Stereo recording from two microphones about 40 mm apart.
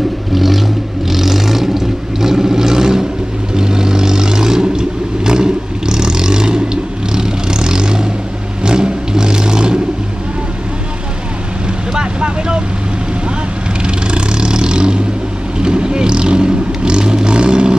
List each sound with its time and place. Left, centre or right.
0.3 s vehicle: centre
11.6 s vehicle: right
13.8 s vehicle: right